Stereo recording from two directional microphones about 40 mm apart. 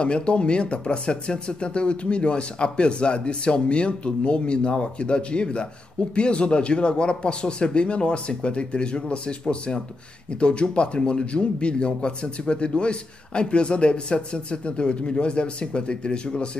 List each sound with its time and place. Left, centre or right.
0.0 s a man's voice: left